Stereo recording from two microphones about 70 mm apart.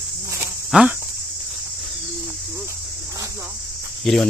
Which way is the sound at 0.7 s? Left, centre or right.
Centre.